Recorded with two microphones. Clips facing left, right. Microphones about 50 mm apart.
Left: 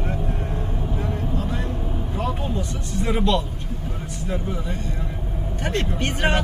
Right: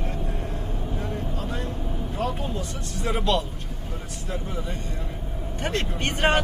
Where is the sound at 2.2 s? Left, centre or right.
Centre.